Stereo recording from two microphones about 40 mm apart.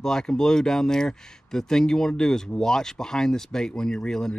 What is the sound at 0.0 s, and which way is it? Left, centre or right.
Speech, centre.